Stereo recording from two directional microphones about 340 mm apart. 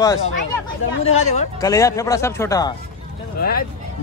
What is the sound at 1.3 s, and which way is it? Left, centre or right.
A man's voice, centre.